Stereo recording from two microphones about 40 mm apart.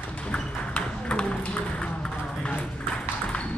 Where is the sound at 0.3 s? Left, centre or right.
Left.